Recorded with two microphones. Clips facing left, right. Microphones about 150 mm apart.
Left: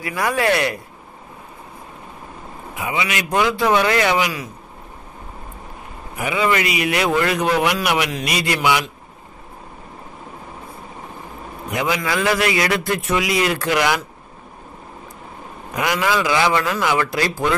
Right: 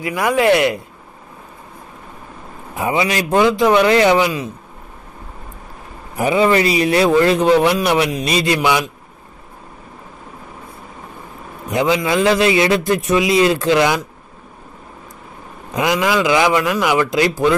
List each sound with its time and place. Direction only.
0.0 s a man's voice: 20° right (ahead or behind)
2.7 s a man's voice: 35° right (ahead or behind)
6.1 s a man's voice: 35° right (ahead or behind)
11.7 s a man's voice: 25° right (ahead or behind)
15.7 s a man's voice: 20° right (ahead or behind)